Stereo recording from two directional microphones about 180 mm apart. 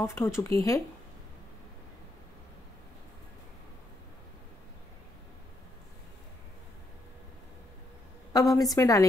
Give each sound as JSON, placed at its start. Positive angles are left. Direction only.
{"t": 0.0, "sound": "speech", "side_deg": 15}
{"t": 8.3, "sound": "a woman's voice", "side_deg": 20}